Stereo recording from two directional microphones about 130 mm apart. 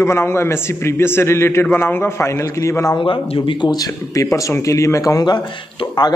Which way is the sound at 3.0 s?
45° left (ahead or behind).